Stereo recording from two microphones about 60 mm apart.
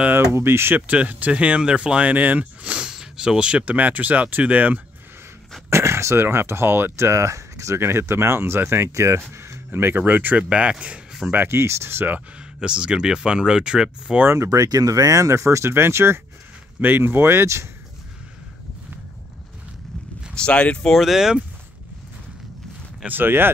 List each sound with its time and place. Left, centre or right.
0.2 s speech: right
0.7 s speech: right
5.7 s speech: right
10.5 s speech: centre
11.4 s speech: right
12.5 s speech: centre
14.2 s speech: right
14.5 s speech: right
20.3 s speech: centre
20.9 s speech: centre
23.0 s speech: right